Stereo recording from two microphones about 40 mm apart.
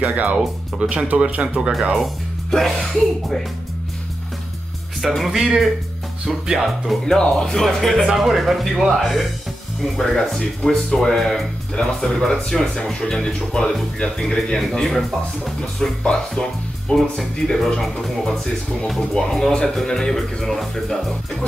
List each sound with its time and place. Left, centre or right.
0.0 s speech: right
0.7 s speech: right
1.7 s speech: centre
2.5 s speech: centre
5.0 s speech: centre
5.3 s speech: centre
7.1 s speech: centre
7.6 s speech: centre
10.6 s speech: left
11.0 s speech: centre
16.0 s speech: centre
16.9 s speech: centre